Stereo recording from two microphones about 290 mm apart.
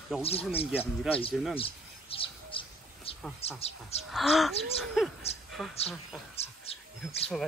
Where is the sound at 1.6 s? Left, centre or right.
Centre.